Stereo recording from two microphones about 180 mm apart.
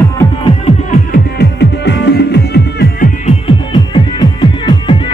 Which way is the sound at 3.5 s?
25° left (ahead or behind).